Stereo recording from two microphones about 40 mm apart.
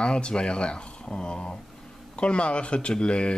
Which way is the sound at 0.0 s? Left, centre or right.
Left.